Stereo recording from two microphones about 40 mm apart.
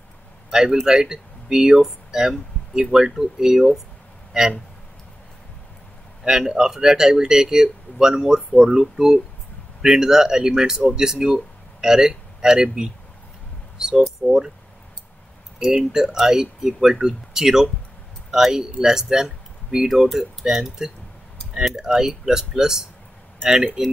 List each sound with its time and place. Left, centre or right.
0.5 s a man's voice: centre
6.2 s speech: centre
15.6 s speech: centre
21.9 s speech: centre